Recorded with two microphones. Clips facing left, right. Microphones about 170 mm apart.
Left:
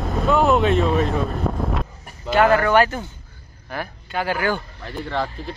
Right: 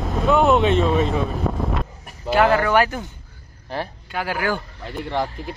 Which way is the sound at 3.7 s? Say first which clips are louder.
Right 2 dB; 35° right (ahead or behind).